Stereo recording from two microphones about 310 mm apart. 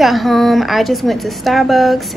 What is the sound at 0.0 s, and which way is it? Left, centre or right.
A woman's voice, centre.